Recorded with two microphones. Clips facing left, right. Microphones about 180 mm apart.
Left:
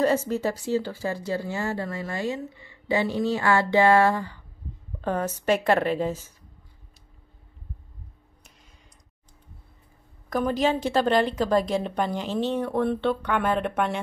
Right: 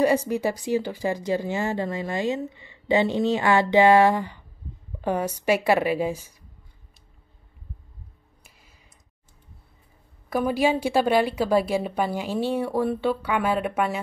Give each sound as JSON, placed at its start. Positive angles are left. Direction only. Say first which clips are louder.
{"t": 0.0, "sound": "speech", "louder": "right 2 dB", "side_deg": -15}
{"t": 8.5, "sound": "a sound", "louder": "even", "side_deg": -5}
{"t": 10.3, "sound": "speech", "louder": "right 1 dB", "side_deg": -10}